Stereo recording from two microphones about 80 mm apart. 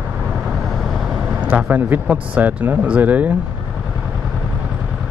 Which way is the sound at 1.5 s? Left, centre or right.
Right.